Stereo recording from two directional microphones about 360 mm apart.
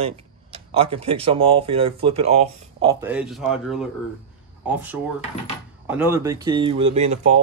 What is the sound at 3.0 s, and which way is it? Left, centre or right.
Speech, centre.